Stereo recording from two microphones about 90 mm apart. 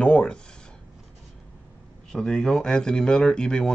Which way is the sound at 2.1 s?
5° left (ahead or behind).